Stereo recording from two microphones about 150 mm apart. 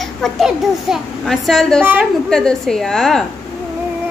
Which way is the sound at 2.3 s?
5° left (ahead or behind).